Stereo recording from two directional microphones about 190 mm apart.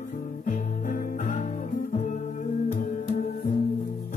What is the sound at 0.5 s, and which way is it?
Music, 45° left (ahead or behind).